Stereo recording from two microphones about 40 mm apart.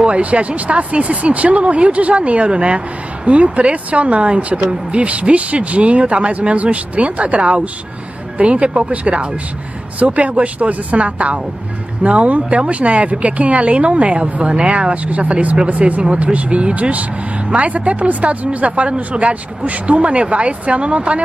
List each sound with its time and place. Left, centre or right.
0.0 s speech: right